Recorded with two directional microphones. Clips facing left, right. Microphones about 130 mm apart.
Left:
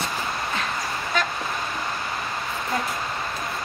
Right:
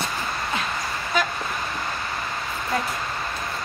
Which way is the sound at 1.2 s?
5° right (ahead or behind).